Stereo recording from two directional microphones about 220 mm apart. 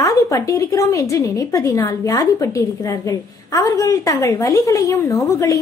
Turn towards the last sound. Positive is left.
turn(degrees=15)  # may be behind; listen again after turning